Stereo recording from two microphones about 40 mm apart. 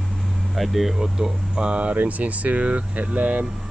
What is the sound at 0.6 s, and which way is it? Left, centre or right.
Speech, centre.